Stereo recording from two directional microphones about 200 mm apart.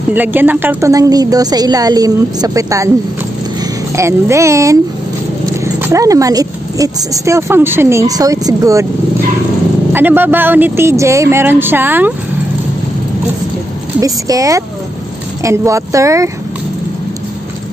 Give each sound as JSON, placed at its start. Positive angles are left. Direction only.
{"t": 0.1, "sound": "speech", "side_deg": -10}
{"t": 3.9, "sound": "speech", "side_deg": -15}
{"t": 9.9, "sound": "speech", "side_deg": -10}
{"t": 13.9, "sound": "speech", "side_deg": -15}